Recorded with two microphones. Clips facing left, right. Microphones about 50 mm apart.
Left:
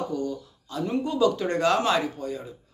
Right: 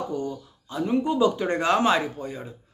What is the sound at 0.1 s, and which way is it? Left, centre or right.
Speech, right.